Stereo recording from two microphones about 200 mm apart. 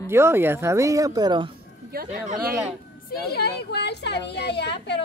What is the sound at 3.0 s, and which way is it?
A woman's voice, 55° left (ahead or behind).